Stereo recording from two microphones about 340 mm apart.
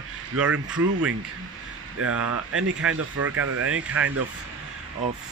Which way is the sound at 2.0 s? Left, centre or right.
Right.